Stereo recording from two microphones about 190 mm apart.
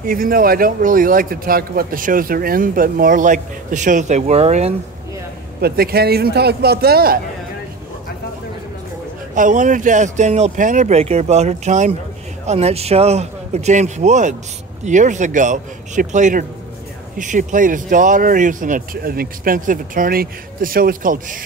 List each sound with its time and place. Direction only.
0.0 s speech: 50° right (ahead or behind)
5.6 s speech: 55° right (ahead or behind)
9.3 s speech: 40° right (ahead or behind)